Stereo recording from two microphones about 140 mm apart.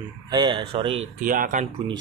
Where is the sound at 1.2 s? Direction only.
75° right (ahead or behind).